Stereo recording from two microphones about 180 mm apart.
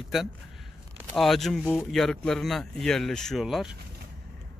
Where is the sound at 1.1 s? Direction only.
Centre (ahead or behind).